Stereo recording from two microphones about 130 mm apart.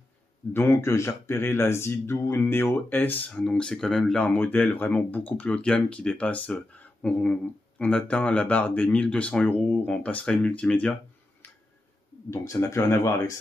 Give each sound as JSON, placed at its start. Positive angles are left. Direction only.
{"t": 0.5, "sound": "speech", "side_deg": 20}
{"t": 12.3, "sound": "speech", "side_deg": 25}